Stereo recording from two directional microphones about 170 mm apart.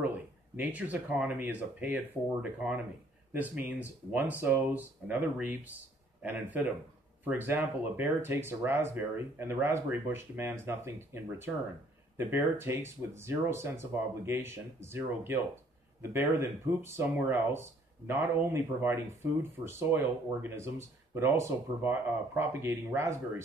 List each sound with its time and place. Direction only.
0.6 s speech: 10° right (ahead or behind)
3.3 s speech: 10° right (ahead or behind)